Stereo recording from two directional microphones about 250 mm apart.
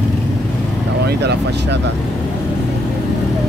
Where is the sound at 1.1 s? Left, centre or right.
Right.